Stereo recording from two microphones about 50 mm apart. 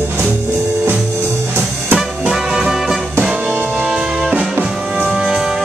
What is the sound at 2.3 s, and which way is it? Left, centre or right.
Music, centre.